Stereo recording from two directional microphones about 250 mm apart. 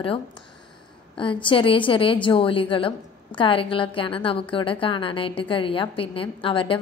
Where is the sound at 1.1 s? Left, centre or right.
Centre.